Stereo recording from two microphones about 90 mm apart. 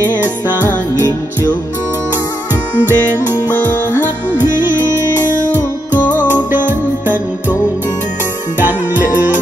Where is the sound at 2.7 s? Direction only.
25° right (ahead or behind).